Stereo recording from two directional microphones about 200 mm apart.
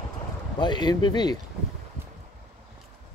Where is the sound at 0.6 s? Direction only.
20° left (ahead or behind).